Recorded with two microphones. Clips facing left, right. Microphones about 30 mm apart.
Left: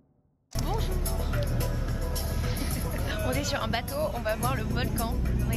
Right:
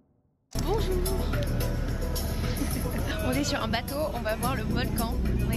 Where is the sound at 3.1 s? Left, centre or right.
Centre.